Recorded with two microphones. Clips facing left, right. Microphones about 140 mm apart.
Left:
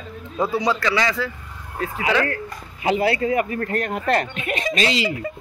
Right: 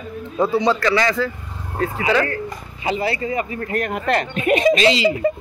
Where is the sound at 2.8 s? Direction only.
60° left (ahead or behind).